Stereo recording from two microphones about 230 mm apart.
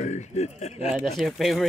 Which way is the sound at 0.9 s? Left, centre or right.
Centre.